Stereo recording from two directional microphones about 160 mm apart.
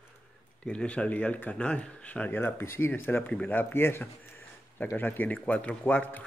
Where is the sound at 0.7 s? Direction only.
5° left (ahead or behind).